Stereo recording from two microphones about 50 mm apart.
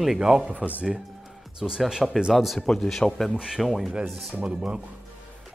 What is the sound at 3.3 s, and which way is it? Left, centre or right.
Speech, centre.